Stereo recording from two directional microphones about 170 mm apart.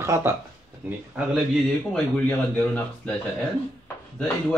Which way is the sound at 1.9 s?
10° left (ahead or behind).